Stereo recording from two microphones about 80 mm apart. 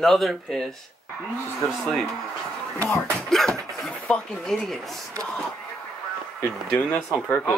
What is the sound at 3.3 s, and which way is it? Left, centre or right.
Speech, centre.